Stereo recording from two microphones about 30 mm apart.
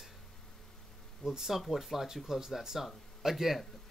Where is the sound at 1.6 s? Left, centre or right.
Centre.